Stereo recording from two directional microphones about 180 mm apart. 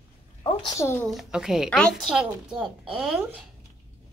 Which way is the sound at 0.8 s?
15° left (ahead or behind).